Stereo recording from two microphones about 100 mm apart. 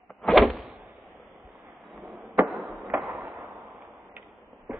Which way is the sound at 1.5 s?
25° right (ahead or behind).